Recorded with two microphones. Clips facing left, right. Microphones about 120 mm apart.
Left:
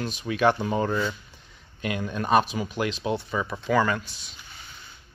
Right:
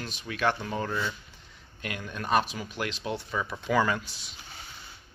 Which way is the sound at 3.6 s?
10° right (ahead or behind).